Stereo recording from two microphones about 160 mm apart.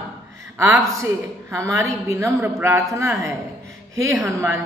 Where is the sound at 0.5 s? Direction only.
20° right (ahead or behind).